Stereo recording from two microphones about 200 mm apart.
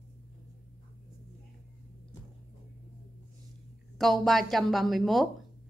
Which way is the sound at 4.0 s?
Centre (ahead or behind).